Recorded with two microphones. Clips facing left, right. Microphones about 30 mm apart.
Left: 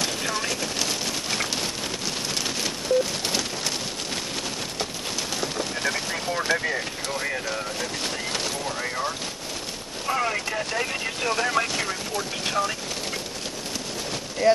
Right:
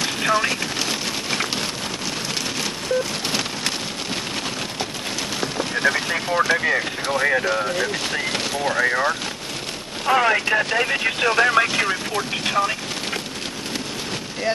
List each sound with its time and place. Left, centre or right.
0.0 s a sound: right
0.7 s a sound: centre
5.4 s speech: right
6.8 s speech: right
8.7 s speech: right
10.0 s speech: right
12.4 s speech: right
14.4 s speech: centre